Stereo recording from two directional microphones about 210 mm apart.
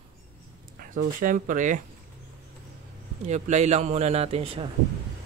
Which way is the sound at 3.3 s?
30° right (ahead or behind).